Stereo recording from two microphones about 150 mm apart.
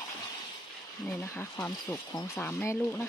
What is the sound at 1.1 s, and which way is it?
Speech, 15° left (ahead or behind).